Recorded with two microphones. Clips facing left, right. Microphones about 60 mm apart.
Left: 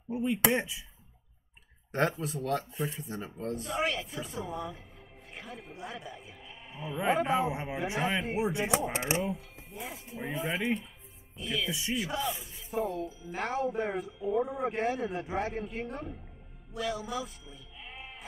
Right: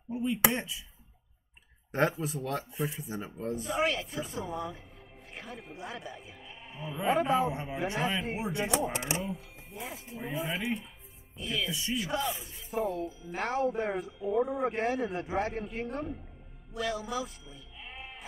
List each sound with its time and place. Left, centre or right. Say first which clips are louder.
0.1 s speech: left 1 dB; left
1.9 s speech: right 1 dB; centre
8.4 s speech: left 2 dB; centre
8.9 s speech: left 3 dB; left
9.7 s speech: even; centre